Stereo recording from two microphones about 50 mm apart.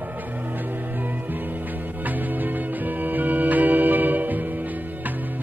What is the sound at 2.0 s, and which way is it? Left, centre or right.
Music, right.